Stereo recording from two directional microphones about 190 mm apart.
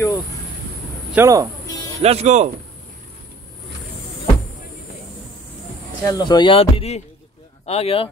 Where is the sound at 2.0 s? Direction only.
35° right (ahead or behind).